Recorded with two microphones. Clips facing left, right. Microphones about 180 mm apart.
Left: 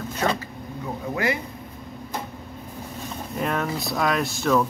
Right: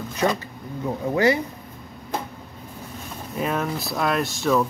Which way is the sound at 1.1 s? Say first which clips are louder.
Right 6 dB; 30° right (ahead or behind).